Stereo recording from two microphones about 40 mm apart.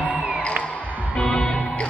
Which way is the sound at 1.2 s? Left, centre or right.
Centre.